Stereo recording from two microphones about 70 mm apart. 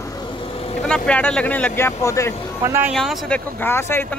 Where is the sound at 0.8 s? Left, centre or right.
Centre.